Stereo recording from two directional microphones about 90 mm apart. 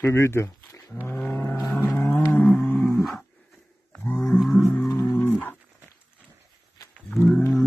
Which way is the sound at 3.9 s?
10° left (ahead or behind).